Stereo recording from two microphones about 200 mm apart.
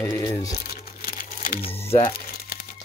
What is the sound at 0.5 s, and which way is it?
Crumpling, 50° left (ahead or behind).